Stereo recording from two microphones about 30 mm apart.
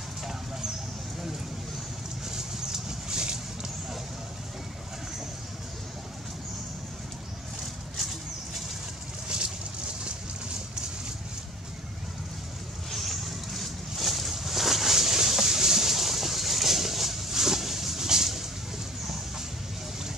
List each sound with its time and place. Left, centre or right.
2.2 s vehicle: centre
9.3 s vehicle: right
12.9 s a sound: centre
18.0 s vehicle: centre